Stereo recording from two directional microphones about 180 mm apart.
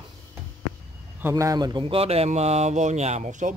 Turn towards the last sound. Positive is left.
turn(degrees=-40)  # may be behind; listen again after turning